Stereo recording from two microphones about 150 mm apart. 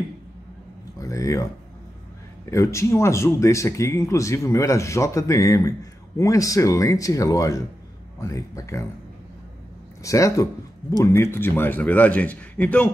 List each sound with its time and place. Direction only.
0.9 s speech: 20° left (ahead or behind)
2.5 s speech: 20° left (ahead or behind)
10.0 s speech: 20° left (ahead or behind)